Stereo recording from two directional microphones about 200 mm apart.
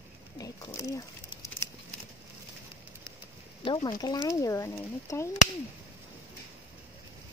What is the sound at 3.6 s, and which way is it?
Speech, 25° left (ahead or behind).